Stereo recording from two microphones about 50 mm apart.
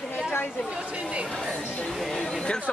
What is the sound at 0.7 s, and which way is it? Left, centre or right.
Chatter, right.